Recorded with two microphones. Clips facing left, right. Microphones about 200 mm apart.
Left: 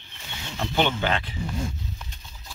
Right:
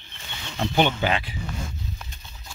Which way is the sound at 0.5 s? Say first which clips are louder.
Right 2 dB; 15° right (ahead or behind).